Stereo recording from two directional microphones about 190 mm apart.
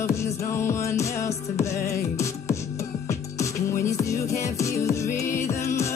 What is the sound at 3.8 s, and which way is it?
Music, 15° left (ahead or behind).